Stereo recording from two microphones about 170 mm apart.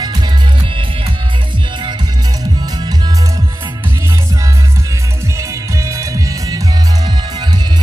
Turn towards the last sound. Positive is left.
turn(degrees=-20)  # may be behind; listen again after turning